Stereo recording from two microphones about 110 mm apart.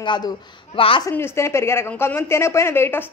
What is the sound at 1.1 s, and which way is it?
A woman's voice, 25° left (ahead or behind).